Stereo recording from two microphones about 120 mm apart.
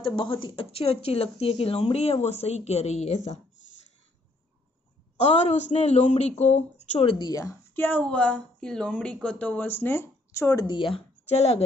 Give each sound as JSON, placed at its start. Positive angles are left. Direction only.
{"t": 0.0, "sound": "speech", "side_deg": 45}
{"t": 5.1, "sound": "speech", "side_deg": 70}
{"t": 7.2, "sound": "a woman's voice", "side_deg": 30}
{"t": 7.7, "sound": "a woman's voice", "side_deg": 15}
{"t": 11.2, "sound": "speech", "side_deg": 60}